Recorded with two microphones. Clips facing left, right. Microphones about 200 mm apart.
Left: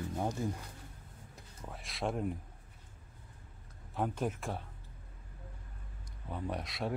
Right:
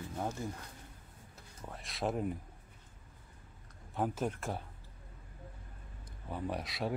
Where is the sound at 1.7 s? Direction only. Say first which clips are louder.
Right 1 dB; centre (ahead or behind).